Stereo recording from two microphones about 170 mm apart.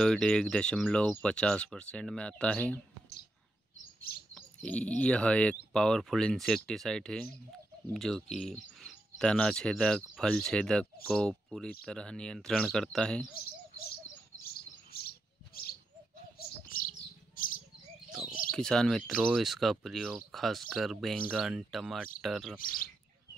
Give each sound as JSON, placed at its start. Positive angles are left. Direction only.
{"t": 0.0, "sound": "speech", "side_deg": 5}
{"t": 4.3, "sound": "speech", "side_deg": 5}
{"t": 14.9, "sound": "chirp", "side_deg": 60}
{"t": 16.3, "sound": "bird", "side_deg": 55}
{"t": 18.5, "sound": "speech", "side_deg": 5}